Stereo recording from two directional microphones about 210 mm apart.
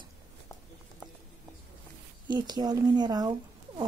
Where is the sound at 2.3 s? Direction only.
20° right (ahead or behind).